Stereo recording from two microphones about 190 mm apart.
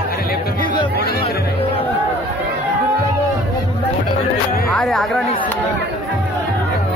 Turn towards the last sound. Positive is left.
turn(degrees=0)  # may be behind; listen again after turning